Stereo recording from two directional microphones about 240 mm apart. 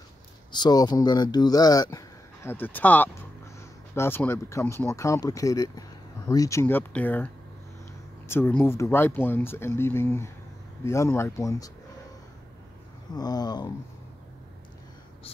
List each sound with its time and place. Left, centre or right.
0.5 s speech: centre
8.3 s speech: centre
13.1 s speech: centre